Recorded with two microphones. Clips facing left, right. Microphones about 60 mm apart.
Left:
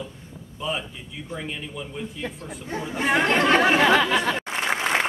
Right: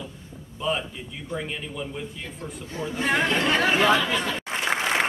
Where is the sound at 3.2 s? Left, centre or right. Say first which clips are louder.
Left 7 dB; left.